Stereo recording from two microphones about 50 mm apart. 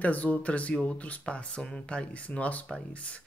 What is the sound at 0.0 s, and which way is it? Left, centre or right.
Speech, left.